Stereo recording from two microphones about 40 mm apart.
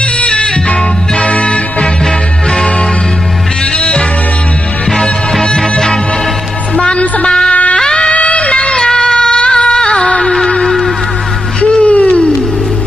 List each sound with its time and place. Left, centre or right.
0.3 s music: left
3.7 s music: left
5.6 s music: centre
6.8 s music: left
7.8 s music: left
8.7 s music: centre
10.3 s music: centre
11.6 s music: left